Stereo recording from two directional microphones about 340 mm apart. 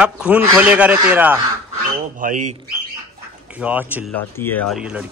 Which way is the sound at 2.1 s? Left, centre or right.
Right.